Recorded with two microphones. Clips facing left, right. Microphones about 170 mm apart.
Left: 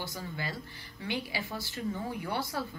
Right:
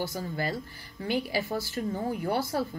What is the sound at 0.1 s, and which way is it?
A woman's voice, 50° right (ahead or behind).